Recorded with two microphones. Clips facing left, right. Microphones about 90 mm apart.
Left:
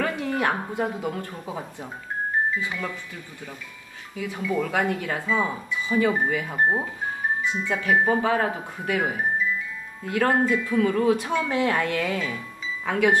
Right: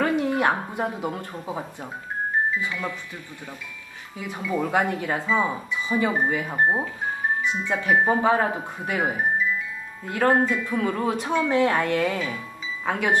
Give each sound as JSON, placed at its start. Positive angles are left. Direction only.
{"t": 0.0, "sound": "speech", "side_deg": -20}
{"t": 4.3, "sound": "speech", "side_deg": -20}
{"t": 12.9, "sound": "speech", "side_deg": -20}